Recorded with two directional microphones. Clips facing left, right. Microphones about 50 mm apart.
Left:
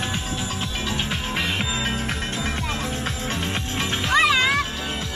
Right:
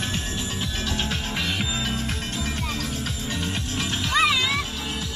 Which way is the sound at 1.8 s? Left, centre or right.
Left.